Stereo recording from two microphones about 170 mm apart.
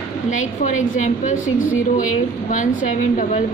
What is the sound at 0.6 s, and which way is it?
A woman's voice, 50° left (ahead or behind).